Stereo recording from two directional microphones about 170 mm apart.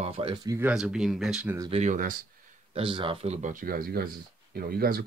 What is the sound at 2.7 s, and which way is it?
Speech, 30° right (ahead or behind).